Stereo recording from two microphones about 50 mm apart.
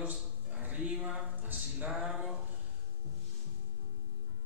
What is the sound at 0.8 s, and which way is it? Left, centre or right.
Speech, right.